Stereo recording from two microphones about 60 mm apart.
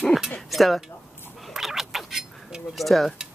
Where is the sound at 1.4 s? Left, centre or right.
Centre.